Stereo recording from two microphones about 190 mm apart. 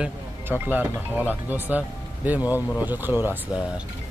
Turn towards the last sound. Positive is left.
turn(degrees=-10)  # may be behind; listen again after turning